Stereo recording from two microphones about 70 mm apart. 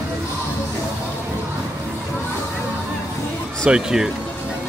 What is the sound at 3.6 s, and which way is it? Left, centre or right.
Speech, centre.